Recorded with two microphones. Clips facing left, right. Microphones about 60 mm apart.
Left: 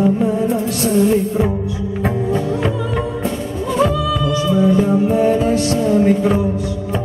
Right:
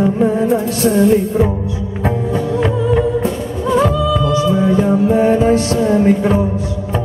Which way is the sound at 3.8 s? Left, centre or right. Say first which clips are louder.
Left 1 dB; right.